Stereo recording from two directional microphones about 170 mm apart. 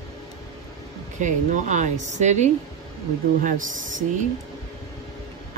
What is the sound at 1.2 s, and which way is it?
Speech, 45° right (ahead or behind).